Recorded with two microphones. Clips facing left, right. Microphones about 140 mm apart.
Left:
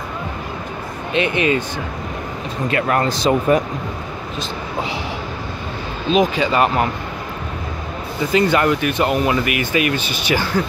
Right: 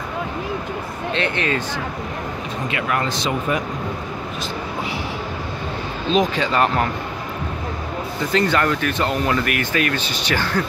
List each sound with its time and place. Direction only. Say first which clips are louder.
1.1 s speech: left 5 dB; 15° left (ahead or behind)
2.7 s speech: left 5 dB; 40° left (ahead or behind)
6.1 s speech: left 2 dB; 5° left (ahead or behind)
8.3 s speech: left 3 dB; 10° left (ahead or behind)